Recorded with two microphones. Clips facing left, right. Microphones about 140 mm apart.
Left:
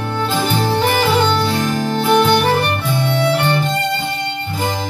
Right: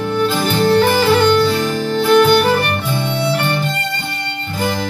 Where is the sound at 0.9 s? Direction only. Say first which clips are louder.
Right 3 dB; 15° left (ahead or behind).